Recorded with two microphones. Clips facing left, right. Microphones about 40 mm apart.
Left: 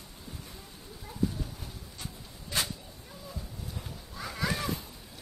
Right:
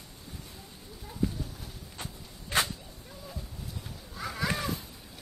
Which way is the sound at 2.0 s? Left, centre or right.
Right.